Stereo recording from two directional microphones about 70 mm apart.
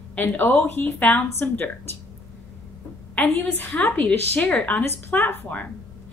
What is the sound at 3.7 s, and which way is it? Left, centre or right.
A woman's voice, centre.